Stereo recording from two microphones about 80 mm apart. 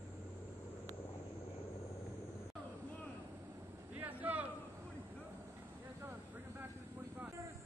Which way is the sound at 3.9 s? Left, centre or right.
Right.